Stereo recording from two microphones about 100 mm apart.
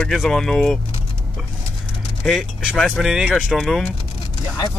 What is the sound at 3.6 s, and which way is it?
Speech, 5° left (ahead or behind).